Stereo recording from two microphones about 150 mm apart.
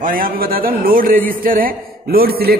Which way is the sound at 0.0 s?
70° right (ahead or behind).